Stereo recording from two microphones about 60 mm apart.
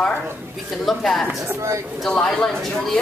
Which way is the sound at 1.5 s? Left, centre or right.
Right.